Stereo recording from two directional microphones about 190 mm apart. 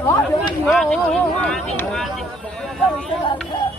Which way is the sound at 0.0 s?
15° left (ahead or behind).